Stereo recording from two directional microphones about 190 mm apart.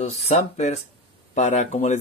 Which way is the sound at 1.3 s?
35° left (ahead or behind).